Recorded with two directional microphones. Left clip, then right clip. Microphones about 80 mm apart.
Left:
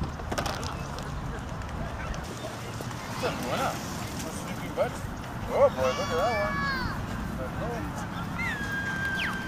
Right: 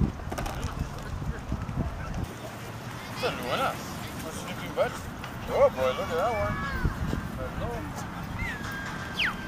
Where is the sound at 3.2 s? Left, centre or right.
Centre.